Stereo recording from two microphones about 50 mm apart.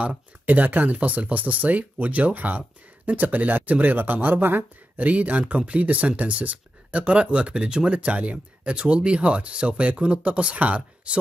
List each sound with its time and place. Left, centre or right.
0.0 s speech: right
4.9 s speech: right